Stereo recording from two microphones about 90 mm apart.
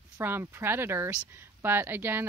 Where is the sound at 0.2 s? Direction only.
25° right (ahead or behind).